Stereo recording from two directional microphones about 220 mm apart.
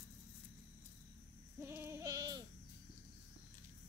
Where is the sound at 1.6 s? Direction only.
10° right (ahead or behind).